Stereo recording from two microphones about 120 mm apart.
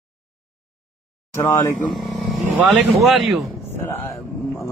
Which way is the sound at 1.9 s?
Centre (ahead or behind).